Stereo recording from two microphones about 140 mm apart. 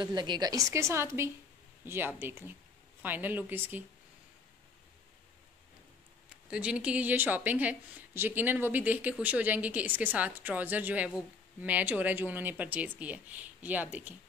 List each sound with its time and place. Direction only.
0.0 s a woman's voice: 30° right (ahead or behind); by 3.8 s 15° right (ahead or behind)
6.5 s speech: 5° right (ahead or behind)